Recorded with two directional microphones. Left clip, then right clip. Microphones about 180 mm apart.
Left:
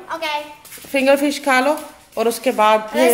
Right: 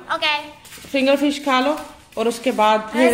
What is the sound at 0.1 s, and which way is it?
Speech, centre (ahead or behind).